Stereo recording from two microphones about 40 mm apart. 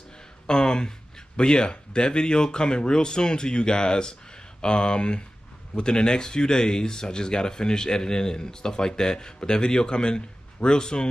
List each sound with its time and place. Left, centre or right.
0.5 s speech: centre